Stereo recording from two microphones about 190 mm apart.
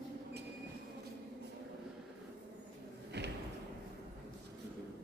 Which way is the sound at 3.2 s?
60° right (ahead or behind).